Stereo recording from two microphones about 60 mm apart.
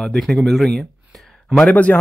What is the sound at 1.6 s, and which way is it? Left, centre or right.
Speech, left.